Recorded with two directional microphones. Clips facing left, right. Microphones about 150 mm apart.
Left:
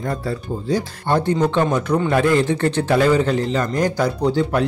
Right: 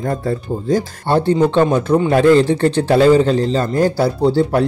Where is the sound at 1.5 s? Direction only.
25° right (ahead or behind).